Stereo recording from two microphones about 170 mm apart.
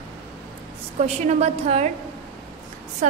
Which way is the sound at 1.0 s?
40° right (ahead or behind).